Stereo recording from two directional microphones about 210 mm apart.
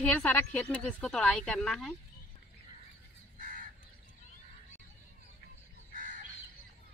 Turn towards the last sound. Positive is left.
turn(degrees=-40)  # may be behind; listen again after turning